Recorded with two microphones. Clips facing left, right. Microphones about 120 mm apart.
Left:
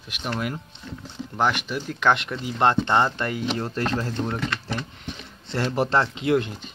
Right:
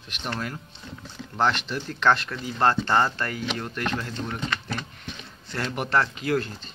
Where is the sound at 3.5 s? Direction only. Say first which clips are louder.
Left 3 dB; 35° left (ahead or behind).